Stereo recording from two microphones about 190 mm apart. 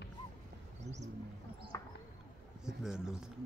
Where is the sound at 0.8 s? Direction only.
35° right (ahead or behind).